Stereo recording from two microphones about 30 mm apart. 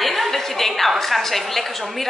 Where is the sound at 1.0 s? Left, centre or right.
Centre.